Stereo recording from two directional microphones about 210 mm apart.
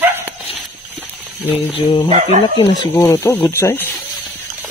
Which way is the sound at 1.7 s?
25° left (ahead or behind).